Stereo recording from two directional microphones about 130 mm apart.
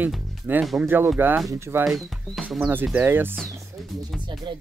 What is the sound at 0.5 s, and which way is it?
Speech, 15° right (ahead or behind).